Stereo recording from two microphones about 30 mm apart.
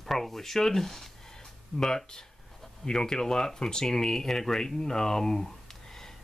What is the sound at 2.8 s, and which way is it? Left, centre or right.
Speech, left.